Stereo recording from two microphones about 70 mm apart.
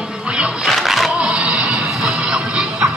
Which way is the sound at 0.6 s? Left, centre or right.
Centre.